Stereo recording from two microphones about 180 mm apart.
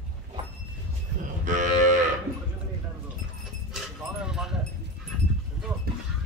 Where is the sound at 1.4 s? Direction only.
45° right (ahead or behind).